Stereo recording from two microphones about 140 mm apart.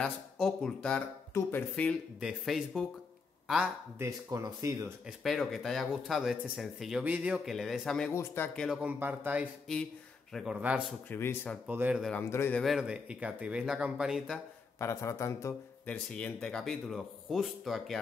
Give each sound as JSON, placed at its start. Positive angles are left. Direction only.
{"t": 0.0, "sound": "speech", "side_deg": 5}
{"t": 2.1, "sound": "a man's voice", "side_deg": 0}
{"t": 4.0, "sound": "speech", "side_deg": -20}
{"t": 5.0, "sound": "a man's voice", "side_deg": 0}
{"t": 8.1, "sound": "speech", "side_deg": 15}
{"t": 8.5, "sound": "a man's voice", "side_deg": -5}
{"t": 11.1, "sound": "speech", "side_deg": 15}
{"t": 11.6, "sound": "speech", "side_deg": -10}
{"t": 12.2, "sound": "speech", "side_deg": 15}
{"t": 12.5, "sound": "speech", "side_deg": 0}
{"t": 14.8, "sound": "speech", "side_deg": 20}
{"t": 15.9, "sound": "a man's voice", "side_deg": 10}